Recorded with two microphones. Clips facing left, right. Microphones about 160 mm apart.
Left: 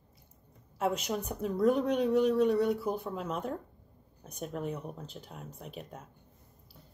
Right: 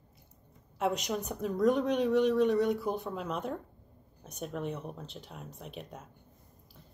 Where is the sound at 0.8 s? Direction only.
5° left (ahead or behind).